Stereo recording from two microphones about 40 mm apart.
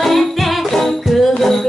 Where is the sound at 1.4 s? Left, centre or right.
Centre.